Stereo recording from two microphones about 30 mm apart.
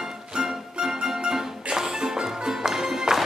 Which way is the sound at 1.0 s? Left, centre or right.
Right.